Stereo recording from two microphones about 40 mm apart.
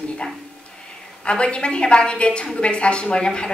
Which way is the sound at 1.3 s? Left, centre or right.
Left.